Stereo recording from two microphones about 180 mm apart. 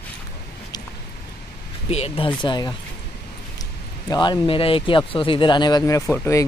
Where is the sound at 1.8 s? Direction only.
35° left (ahead or behind).